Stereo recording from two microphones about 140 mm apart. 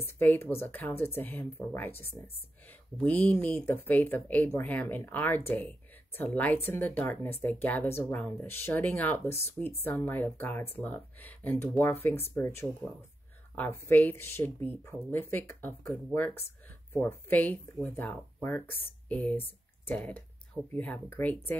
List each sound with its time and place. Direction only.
0.0 s speech: 15° left (ahead or behind)